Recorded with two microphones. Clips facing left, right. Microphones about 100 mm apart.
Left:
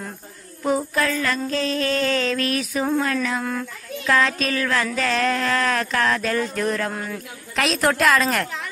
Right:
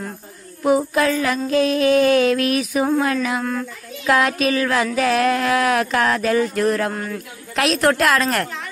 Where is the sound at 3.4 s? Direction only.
Centre (ahead or behind).